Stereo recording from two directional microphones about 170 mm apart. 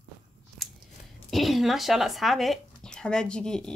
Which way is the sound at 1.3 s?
Centre (ahead or behind).